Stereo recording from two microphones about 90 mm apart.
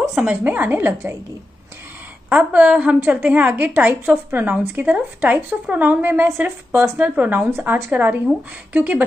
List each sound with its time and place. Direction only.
0.1 s speech: 10° right (ahead or behind)
0.4 s a woman's voice: 25° right (ahead or behind)
2.2 s a woman's voice: 15° right (ahead or behind)